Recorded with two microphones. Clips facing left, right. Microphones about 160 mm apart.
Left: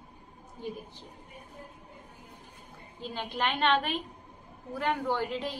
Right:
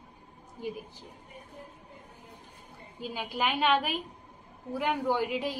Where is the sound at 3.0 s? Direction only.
10° right (ahead or behind).